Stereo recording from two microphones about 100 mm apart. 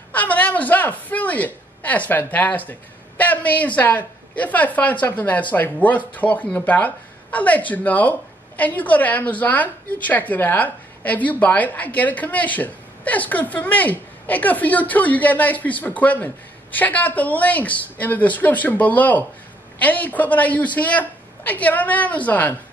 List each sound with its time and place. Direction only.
0.1 s a man's voice: 15° left (ahead or behind)